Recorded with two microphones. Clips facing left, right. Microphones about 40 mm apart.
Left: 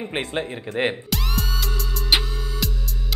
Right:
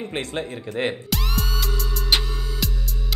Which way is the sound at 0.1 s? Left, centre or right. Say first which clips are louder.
Left 2 dB; centre.